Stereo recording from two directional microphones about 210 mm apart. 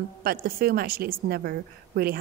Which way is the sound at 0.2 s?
45° right (ahead or behind).